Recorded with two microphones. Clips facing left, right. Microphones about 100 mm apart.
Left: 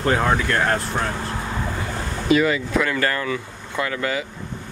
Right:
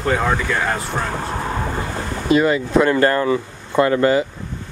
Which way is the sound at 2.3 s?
35° right (ahead or behind).